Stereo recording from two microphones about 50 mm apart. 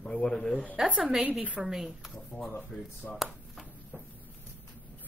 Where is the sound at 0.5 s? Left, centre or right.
Left.